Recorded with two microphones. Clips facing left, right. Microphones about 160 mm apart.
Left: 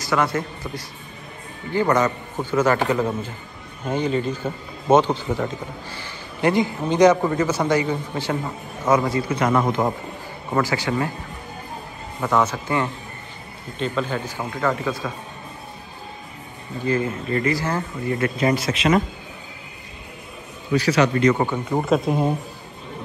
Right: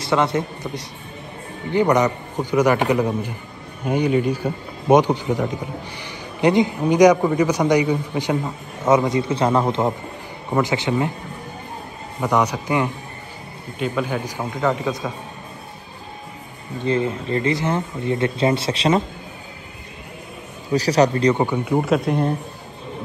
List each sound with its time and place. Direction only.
0.0 s a man's voice: 25° right (ahead or behind)
12.2 s a man's voice: 15° right (ahead or behind)
16.8 s speech: 25° right (ahead or behind)
20.7 s a man's voice: 40° right (ahead or behind)
21.5 s speech: 5° right (ahead or behind)